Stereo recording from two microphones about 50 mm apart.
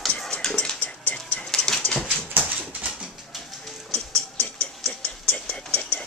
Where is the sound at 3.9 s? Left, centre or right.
Left.